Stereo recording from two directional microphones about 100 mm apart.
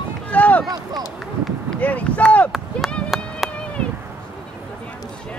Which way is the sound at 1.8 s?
15° left (ahead or behind).